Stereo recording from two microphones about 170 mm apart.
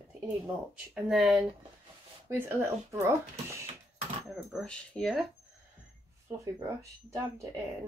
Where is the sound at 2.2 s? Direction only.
15° right (ahead or behind).